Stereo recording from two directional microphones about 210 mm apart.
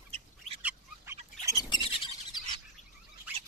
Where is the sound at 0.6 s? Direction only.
5° right (ahead or behind).